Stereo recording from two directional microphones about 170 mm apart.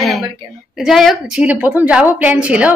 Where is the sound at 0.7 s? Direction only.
Centre (ahead or behind).